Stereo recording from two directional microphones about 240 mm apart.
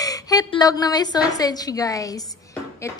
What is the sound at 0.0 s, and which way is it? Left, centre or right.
A woman's voice, centre.